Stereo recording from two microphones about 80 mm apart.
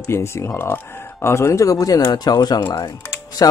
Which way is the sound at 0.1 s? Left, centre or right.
Left.